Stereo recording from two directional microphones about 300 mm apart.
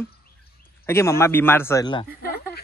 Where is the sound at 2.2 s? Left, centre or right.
Left.